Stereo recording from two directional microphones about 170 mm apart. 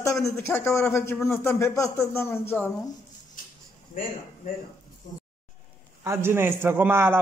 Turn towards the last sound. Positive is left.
turn(degrees=-10)  # may be behind; listen again after turning